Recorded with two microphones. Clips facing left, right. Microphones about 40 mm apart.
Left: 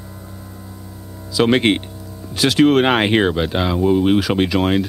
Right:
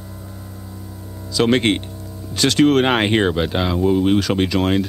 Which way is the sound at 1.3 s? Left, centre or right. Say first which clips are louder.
Left 1 dB; centre.